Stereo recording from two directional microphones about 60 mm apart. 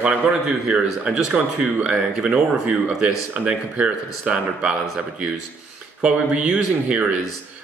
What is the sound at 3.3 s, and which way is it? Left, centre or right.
A man's voice, centre.